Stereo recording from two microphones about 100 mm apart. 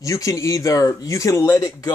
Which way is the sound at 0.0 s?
30° left (ahead or behind).